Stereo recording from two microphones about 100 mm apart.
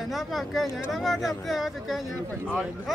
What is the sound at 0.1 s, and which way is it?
Speech, centre (ahead or behind).